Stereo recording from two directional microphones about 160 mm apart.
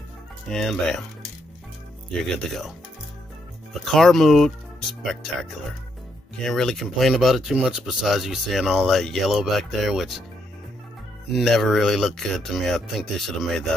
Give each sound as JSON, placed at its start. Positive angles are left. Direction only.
{"t": 0.5, "sound": "speech", "side_deg": 5}
{"t": 2.2, "sound": "speech", "side_deg": 0}
{"t": 3.7, "sound": "speech", "side_deg": 0}
{"t": 11.3, "sound": "speech", "side_deg": 0}